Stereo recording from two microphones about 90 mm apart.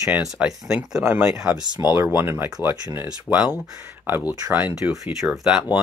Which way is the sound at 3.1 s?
10° right (ahead or behind).